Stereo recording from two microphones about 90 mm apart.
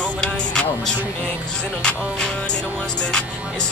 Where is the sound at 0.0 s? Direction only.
10° left (ahead or behind).